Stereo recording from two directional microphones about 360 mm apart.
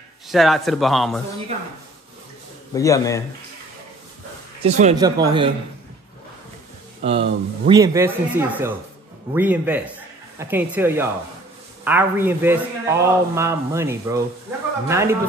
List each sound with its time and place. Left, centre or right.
0.3 s speech: centre
2.7 s a man's voice: centre
4.6 s a man's voice: centre
7.0 s a man's voice: centre